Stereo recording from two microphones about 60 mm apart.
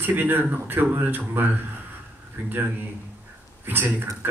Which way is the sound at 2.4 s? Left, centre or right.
Right.